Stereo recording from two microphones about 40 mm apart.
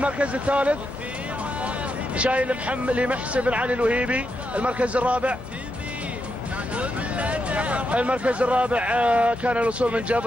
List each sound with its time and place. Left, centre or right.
0.0 s speech: right
2.1 s speech: right
6.7 s speech: right